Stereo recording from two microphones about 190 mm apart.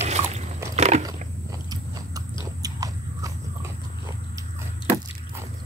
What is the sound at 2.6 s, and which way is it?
Biting, 20° right (ahead or behind).